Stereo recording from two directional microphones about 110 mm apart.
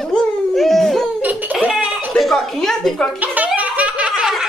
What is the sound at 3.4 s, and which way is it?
Laughter, 10° right (ahead or behind).